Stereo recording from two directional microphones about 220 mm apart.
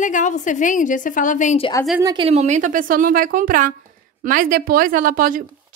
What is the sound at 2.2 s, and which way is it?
A woman's voice, 30° right (ahead or behind).